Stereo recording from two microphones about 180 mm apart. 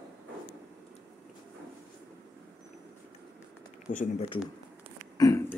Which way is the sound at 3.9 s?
45° left (ahead or behind).